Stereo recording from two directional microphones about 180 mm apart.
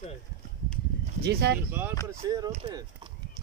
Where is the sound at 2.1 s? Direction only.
20° right (ahead or behind).